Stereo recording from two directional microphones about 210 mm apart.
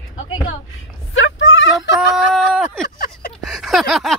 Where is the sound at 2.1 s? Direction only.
Centre (ahead or behind).